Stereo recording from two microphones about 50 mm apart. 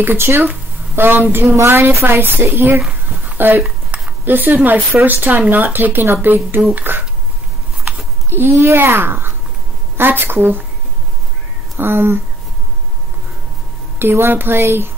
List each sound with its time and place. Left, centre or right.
0.0 s a woman's voice: right
1.6 s a woman's voice: right
2.0 s a woman's voice: right
8.5 s a woman's voice: right
8.7 s a woman's voice: right
11.8 s a woman's voice: right
13.9 s a woman's voice: right